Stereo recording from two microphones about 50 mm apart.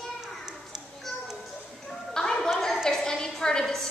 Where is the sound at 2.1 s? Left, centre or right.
Centre.